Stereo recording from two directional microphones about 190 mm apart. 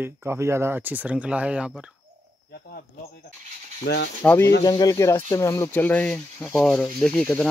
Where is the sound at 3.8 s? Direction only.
60° left (ahead or behind).